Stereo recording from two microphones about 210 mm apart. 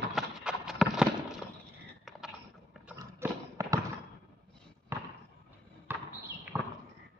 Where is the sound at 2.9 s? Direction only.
15° right (ahead or behind).